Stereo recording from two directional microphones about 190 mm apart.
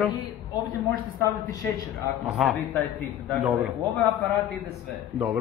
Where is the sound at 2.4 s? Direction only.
Centre (ahead or behind).